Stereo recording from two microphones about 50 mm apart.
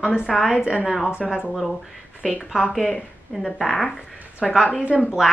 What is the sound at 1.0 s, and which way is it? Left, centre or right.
Speech, centre.